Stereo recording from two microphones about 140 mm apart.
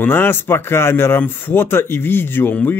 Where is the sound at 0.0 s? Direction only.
15° left (ahead or behind).